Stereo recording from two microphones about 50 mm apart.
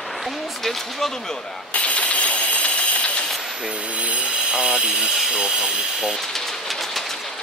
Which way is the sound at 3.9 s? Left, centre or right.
Right.